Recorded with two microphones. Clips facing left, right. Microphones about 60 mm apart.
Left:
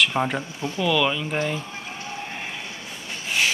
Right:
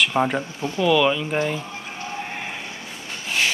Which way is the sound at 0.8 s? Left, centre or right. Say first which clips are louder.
Right 4 dB; centre.